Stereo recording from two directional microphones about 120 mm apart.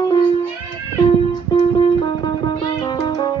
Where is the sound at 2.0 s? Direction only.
35° left (ahead or behind).